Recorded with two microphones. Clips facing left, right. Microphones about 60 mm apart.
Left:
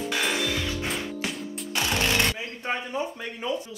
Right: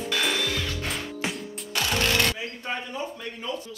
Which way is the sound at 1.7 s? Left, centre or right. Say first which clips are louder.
Even; centre.